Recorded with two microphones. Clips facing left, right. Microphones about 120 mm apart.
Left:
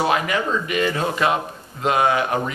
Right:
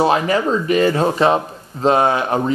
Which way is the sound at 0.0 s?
30° right (ahead or behind).